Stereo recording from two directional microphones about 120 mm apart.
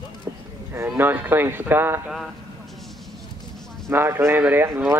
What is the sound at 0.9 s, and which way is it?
Speech, 15° right (ahead or behind).